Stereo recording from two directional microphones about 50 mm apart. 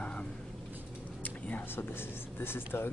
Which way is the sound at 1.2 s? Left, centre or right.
Left.